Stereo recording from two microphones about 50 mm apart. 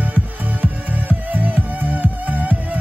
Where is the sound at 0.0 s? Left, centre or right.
Right.